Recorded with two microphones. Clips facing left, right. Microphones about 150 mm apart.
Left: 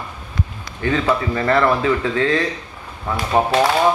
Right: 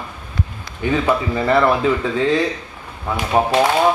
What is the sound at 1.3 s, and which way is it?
Speech, 10° right (ahead or behind).